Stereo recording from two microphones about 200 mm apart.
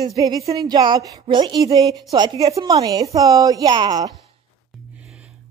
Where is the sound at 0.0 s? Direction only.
20° right (ahead or behind).